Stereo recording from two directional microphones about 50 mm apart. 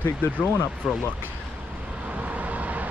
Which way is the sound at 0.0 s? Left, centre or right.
Left.